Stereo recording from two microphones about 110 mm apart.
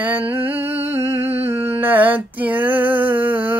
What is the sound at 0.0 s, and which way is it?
Humming, 15° right (ahead or behind).